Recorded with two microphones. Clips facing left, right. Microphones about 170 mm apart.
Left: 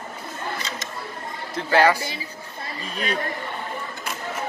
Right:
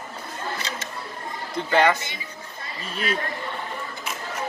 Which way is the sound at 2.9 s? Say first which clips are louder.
Even; 40° left (ahead or behind).